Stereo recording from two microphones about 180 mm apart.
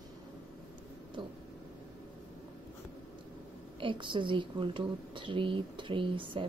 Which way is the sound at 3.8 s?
25° right (ahead or behind).